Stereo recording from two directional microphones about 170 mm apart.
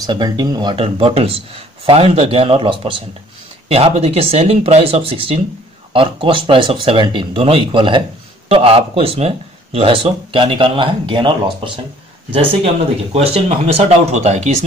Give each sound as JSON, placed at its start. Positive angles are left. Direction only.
{"t": 0.0, "sound": "speech", "side_deg": -25}
{"t": 13.1, "sound": "speech", "side_deg": -35}